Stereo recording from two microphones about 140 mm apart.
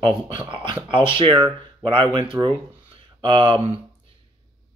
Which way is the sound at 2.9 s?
35° right (ahead or behind).